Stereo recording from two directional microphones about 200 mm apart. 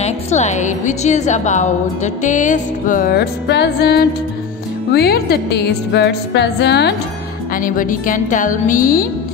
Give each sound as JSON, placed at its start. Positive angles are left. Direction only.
{"t": 0.0, "sound": "a woman's voice", "side_deg": 35}
{"t": 7.5, "sound": "a woman's voice", "side_deg": 40}